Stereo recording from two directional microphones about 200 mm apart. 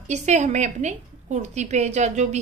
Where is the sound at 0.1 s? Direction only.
35° right (ahead or behind).